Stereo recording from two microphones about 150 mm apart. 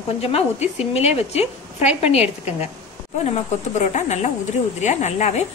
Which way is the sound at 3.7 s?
50° left (ahead or behind).